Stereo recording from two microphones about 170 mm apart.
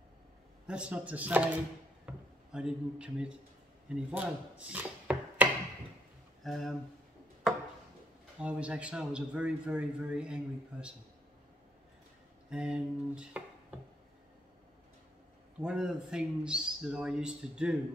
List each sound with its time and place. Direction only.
0.7 s a man's voice: 5° right (ahead or behind)
3.9 s chopping: 5° right (ahead or behind)
6.4 s speech: centre (ahead or behind)
8.4 s a man's voice: 5° right (ahead or behind)
12.4 s speech: 5° right (ahead or behind)
15.6 s a man's voice: 5° right (ahead or behind)